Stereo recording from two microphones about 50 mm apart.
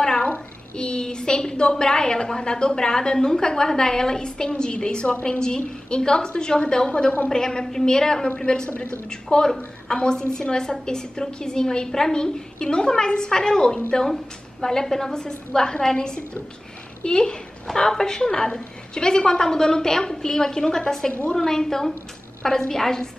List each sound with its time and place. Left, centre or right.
0.0 s a sound: centre
0.7 s a woman's voice: centre
6.9 s a woman's voice: left
7.2 s a woman's voice: centre